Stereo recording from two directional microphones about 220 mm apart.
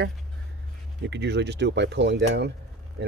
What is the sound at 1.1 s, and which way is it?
Speech, 50° right (ahead or behind).